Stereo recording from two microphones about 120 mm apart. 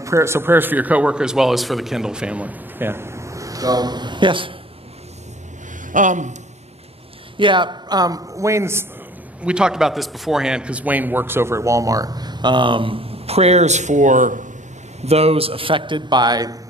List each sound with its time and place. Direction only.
0.0 s a man's voice: 25° right (ahead or behind); by 4.6 s 45° right (ahead or behind)
5.9 s speech: 90° right
7.3 s a man's voice: 40° right (ahead or behind); by 8.8 s 20° right (ahead or behind)
9.4 s a man's voice: 5° right (ahead or behind); by 14.5 s 90° right
15.0 s a man's voice: 60° right (ahead or behind); by 16.5 s 35° right (ahead or behind)